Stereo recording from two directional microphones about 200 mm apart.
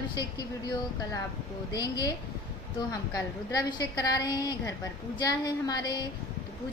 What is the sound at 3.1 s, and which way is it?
A woman's voice, 20° left (ahead or behind).